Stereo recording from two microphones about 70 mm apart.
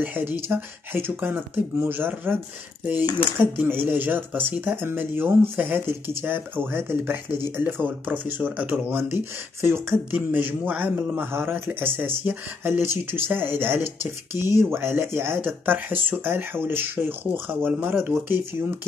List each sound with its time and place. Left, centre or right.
0.0 s speech: right
3.5 s speech: right
11.3 s speech: right